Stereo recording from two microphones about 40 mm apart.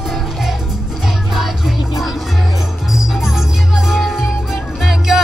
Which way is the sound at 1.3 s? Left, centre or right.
Centre.